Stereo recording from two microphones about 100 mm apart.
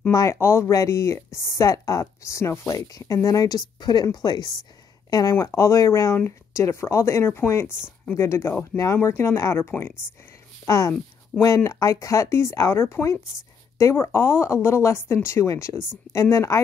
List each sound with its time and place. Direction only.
0.1 s speech: 30° left (ahead or behind)